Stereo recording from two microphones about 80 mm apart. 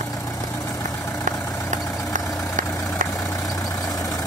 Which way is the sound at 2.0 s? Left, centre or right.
Left.